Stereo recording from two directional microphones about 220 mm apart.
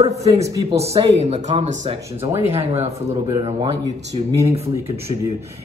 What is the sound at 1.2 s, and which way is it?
Speech, 30° right (ahead or behind).